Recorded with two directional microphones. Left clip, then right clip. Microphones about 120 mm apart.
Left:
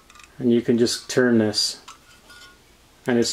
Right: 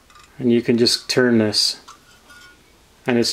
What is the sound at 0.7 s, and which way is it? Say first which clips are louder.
Speech: right 3 dB; 15° right (ahead or behind).